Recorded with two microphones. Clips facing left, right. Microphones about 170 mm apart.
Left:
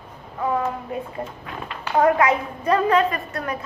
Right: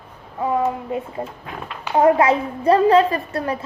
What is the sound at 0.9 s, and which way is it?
Speech, 25° right (ahead or behind).